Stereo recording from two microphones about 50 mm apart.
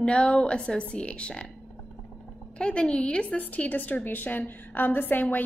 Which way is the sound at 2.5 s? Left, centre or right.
Centre.